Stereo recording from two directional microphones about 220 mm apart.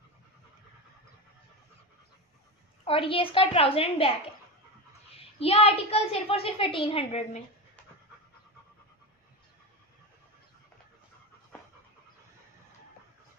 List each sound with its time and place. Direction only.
2.8 s a woman's voice: 25° left (ahead or behind)
5.4 s a woman's voice: 25° left (ahead or behind)